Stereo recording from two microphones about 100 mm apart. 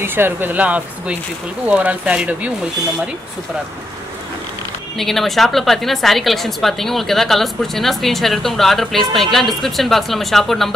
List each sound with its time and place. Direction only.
0.0 s speech: 20° right (ahead or behind)
4.9 s a woman's voice: centre (ahead or behind)